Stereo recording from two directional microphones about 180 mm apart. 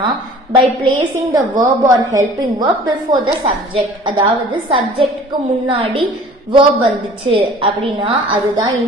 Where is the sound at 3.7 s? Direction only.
25° right (ahead or behind).